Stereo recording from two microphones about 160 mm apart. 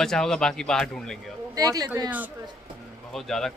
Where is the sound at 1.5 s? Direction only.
25° right (ahead or behind).